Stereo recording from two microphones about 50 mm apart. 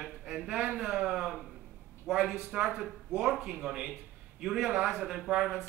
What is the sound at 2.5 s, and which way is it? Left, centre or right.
A man's voice, right.